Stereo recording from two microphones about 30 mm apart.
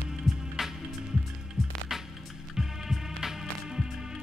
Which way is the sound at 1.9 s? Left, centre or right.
Centre.